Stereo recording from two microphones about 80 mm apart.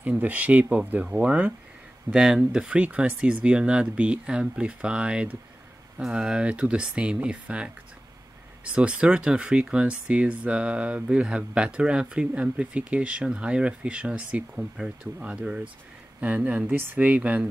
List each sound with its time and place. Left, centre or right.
0.2 s speech: centre